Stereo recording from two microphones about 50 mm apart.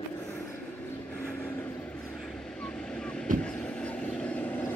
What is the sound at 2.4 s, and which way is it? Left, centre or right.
Vehicle, centre.